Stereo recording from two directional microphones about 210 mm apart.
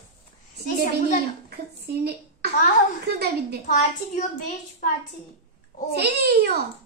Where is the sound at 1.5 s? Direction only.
50° right (ahead or behind).